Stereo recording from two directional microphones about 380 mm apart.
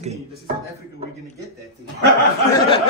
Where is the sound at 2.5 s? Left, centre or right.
Centre.